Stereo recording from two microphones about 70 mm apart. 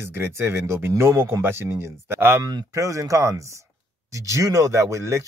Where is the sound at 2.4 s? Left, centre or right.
Right.